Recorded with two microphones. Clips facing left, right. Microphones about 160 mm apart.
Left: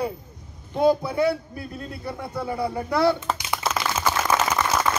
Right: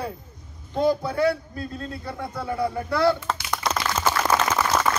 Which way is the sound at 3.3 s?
5° left (ahead or behind).